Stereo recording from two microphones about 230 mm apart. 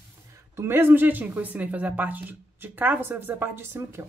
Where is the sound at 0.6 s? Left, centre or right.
Centre.